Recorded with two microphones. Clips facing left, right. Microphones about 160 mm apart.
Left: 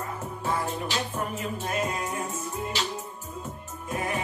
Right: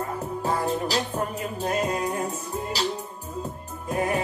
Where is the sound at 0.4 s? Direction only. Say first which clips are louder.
Right 4 dB; 40° right (ahead or behind).